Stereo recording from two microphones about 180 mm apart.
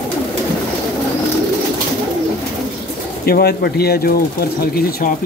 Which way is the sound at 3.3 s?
60° left (ahead or behind).